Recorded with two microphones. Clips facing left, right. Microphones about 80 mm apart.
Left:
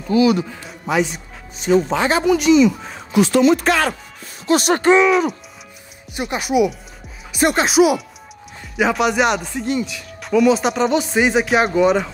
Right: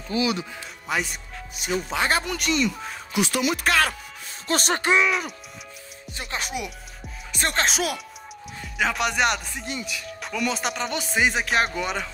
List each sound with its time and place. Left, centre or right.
0.1 s speech: left
0.5 s speech: centre
3.3 s speech: centre
4.5 s speech: centre
4.8 s speech: centre
6.1 s speech: centre